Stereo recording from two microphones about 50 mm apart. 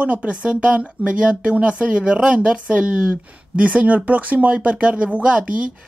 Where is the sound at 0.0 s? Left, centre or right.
Right.